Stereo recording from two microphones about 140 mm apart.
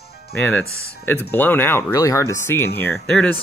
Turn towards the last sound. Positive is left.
turn(degrees=5)  # may be behind; listen again after turning